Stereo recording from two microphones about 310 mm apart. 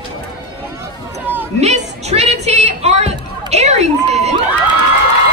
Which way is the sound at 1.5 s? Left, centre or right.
Right.